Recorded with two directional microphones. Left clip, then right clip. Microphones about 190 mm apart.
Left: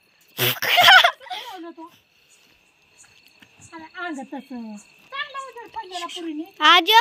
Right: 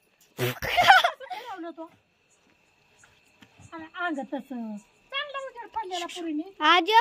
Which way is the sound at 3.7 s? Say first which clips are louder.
Right 1 dB; 15° right (ahead or behind).